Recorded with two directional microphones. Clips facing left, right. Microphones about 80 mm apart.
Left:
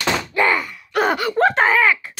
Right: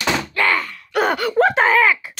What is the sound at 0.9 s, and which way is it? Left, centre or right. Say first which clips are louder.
Speech: even; centre.